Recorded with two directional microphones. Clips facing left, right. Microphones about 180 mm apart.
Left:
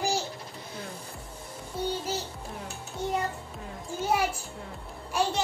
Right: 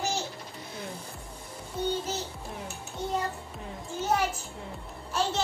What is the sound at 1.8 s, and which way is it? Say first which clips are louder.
Music: right 1 dB; 10° left (ahead or behind).